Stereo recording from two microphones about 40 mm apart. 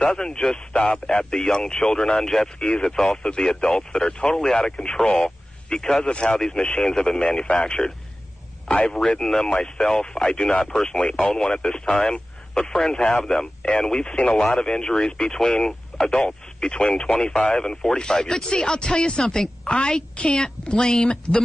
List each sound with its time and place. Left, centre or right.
0.2 s speech: centre
2.2 s speech: centre
2.6 s speech: left
6.0 s speech: left
8.7 s speech: centre